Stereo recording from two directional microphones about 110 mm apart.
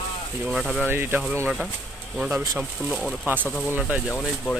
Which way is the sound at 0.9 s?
20° right (ahead or behind).